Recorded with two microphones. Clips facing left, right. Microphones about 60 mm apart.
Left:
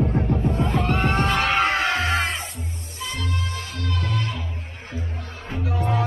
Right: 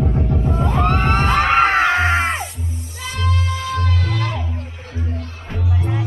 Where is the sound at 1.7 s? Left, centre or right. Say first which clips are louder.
Right 6 dB; right.